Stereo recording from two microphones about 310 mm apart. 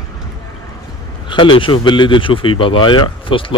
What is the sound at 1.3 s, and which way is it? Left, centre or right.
Speech, centre.